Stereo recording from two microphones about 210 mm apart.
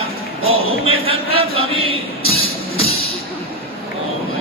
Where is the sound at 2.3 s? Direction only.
25° left (ahead or behind).